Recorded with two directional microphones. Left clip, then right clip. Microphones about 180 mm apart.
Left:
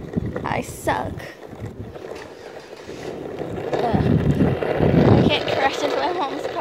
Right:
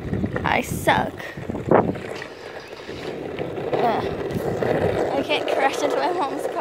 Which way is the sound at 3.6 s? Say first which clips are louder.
Right 1 dB; centre (ahead or behind).